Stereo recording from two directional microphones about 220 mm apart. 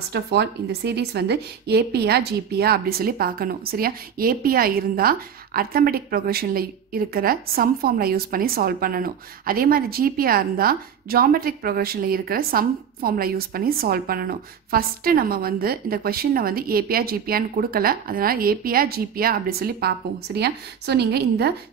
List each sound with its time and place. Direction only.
0.1 s a woman's voice: 50° right (ahead or behind)